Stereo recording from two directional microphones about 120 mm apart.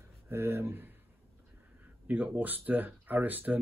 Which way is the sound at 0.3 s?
20° right (ahead or behind).